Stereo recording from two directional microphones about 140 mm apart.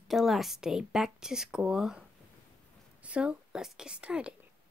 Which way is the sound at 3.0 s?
10° right (ahead or behind).